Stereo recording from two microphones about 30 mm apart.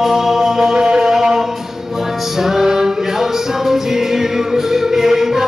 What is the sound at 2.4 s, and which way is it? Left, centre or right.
Music, centre.